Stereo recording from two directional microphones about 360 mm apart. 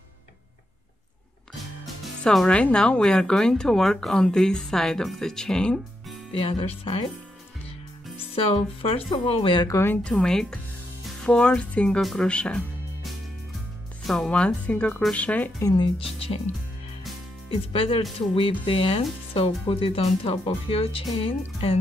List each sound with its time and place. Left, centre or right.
2.2 s speech: centre
8.8 s speech: centre
17.5 s speech: centre